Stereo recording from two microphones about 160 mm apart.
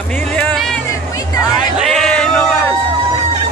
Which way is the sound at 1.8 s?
Centre (ahead or behind).